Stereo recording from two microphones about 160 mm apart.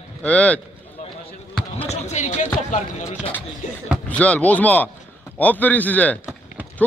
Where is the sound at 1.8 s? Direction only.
45° left (ahead or behind).